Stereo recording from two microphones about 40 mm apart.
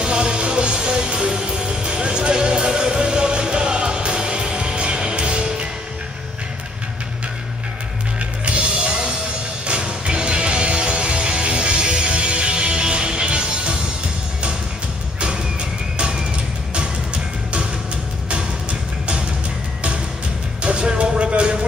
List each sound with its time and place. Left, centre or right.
0.0 s music: right
8.5 s music: right
15.1 s music: right
20.6 s music: right